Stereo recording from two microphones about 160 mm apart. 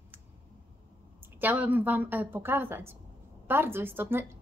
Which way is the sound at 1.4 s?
10° right (ahead or behind).